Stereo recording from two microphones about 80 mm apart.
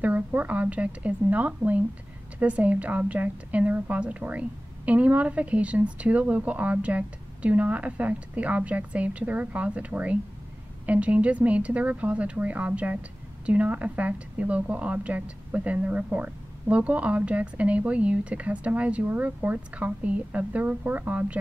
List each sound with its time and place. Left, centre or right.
0.0 s a woman's voice: centre